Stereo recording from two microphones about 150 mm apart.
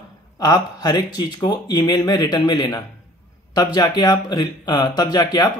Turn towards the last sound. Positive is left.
turn(degrees=25)  # may be behind; listen again after turning